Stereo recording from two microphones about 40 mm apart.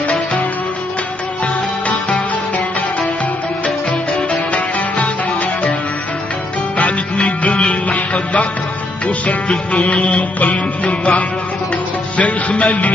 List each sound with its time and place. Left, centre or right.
4.3 s music: left
6.8 s music: left